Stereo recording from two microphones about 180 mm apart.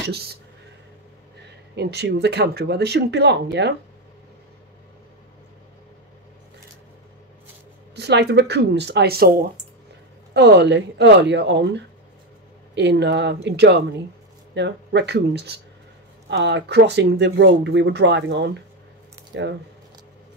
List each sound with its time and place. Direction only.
0.1 s speech: 60° right (ahead or behind)
1.8 s speech: 65° right (ahead or behind)
7.9 s speech: 70° right (ahead or behind)
10.3 s speech: 70° right (ahead or behind)